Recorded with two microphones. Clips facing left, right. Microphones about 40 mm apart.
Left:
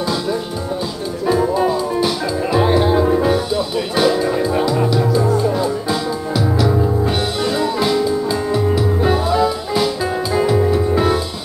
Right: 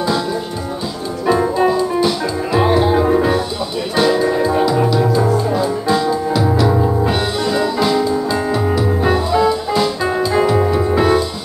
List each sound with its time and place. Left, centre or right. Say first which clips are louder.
1.2 s music: right 1 dB; centre
1.7 s music: right 2 dB; centre
3.9 s music: right 2 dB; centre
7.4 s music: right 1 dB; centre